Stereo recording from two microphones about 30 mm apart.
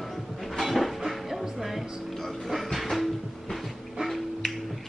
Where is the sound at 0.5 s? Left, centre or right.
Centre.